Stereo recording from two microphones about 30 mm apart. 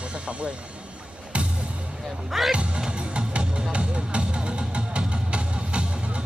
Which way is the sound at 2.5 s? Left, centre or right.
Right.